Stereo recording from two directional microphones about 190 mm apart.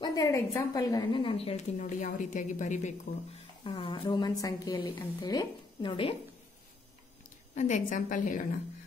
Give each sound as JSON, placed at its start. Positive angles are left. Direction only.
{"t": 0.0, "sound": "a woman's voice", "side_deg": 20}
{"t": 3.6, "sound": "a woman's voice", "side_deg": 25}
{"t": 7.5, "sound": "a woman's voice", "side_deg": 40}